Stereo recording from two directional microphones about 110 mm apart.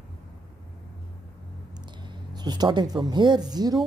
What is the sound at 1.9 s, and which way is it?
Speech, 45° right (ahead or behind).